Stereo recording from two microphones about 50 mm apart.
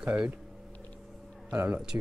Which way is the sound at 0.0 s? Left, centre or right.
Right.